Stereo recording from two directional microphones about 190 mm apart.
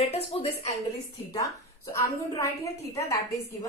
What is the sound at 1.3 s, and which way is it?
A woman's voice, 15° left (ahead or behind).